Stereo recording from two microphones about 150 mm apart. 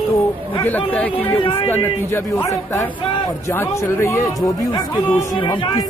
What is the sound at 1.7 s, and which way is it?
Speech, 20° left (ahead or behind).